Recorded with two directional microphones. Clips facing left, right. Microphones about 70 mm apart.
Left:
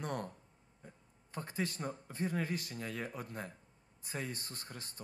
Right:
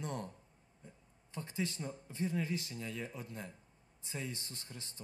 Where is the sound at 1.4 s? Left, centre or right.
Left.